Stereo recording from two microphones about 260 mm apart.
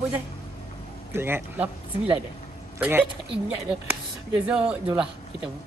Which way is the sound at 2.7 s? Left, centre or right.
Centre.